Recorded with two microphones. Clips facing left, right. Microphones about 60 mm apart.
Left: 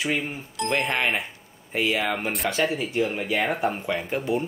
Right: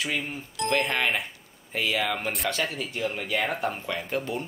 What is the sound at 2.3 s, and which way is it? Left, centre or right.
Speech, centre.